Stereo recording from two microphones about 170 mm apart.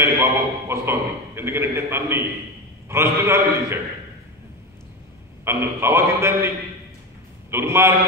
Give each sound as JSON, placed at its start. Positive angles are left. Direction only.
{"t": 0.0, "sound": "a man's voice", "side_deg": -15}
{"t": 5.4, "sound": "a man's voice", "side_deg": -15}
{"t": 7.5, "sound": "a man's voice", "side_deg": -15}